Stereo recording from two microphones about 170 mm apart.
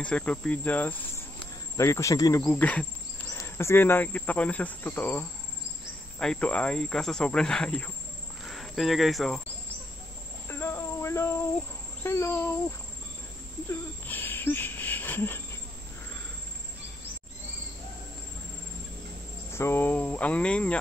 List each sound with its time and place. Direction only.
0.0 s speech: 5° left (ahead or behind)
2.4 s speech: 10° left (ahead or behind)
10.5 s a sound: 15° left (ahead or behind)
12.0 s speech: 15° left (ahead or behind)
13.7 s owl: 10° left (ahead or behind)
19.5 s speech: 15° left (ahead or behind)